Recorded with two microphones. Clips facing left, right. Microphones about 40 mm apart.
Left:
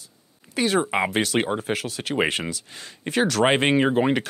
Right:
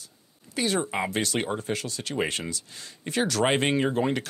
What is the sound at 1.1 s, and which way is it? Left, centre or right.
Speech, centre.